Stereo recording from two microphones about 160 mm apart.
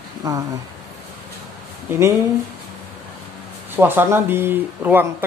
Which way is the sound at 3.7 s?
15° right (ahead or behind).